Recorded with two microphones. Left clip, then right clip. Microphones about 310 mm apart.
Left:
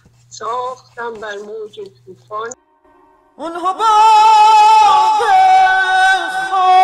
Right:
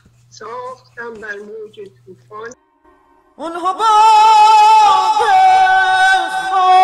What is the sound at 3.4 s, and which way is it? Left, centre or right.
Singing, centre.